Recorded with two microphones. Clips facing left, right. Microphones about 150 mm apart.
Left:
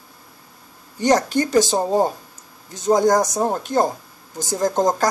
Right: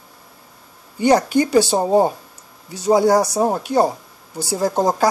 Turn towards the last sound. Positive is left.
turn(degrees=-10)  # may be behind; listen again after turning